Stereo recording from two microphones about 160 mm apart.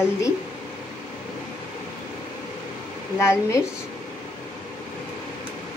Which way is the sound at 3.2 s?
20° left (ahead or behind).